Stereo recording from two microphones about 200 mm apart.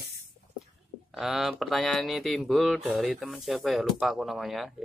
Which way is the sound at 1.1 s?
Centre (ahead or behind).